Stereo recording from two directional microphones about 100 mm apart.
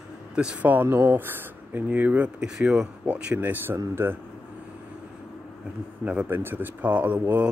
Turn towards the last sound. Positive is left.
turn(degrees=-15)  # may be behind; listen again after turning